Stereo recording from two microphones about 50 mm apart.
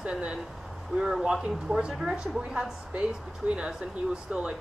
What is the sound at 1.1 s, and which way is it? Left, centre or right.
Speech, centre.